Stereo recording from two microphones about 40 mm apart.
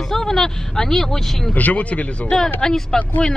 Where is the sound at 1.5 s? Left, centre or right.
Left.